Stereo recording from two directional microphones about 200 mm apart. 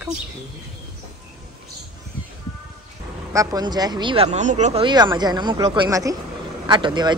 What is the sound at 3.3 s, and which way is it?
Speech, 15° right (ahead or behind).